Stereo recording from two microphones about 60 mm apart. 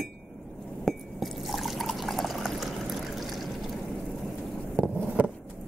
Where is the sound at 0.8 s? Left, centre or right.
Centre.